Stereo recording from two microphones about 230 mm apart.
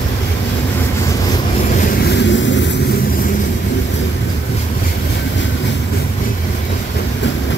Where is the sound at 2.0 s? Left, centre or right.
Left.